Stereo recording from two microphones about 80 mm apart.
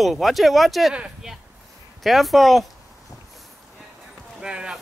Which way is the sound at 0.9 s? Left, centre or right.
Centre.